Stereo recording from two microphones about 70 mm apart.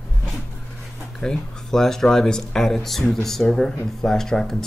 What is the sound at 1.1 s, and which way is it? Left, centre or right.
Speech, centre.